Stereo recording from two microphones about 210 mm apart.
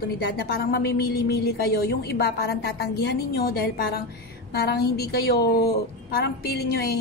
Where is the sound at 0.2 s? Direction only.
50° left (ahead or behind).